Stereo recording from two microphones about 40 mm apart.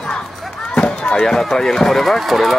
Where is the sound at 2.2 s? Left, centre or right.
Centre.